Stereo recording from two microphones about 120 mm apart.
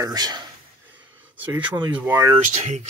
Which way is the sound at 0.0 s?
35° right (ahead or behind).